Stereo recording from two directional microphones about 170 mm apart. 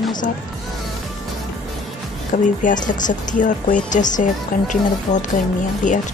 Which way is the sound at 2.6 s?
50° left (ahead or behind).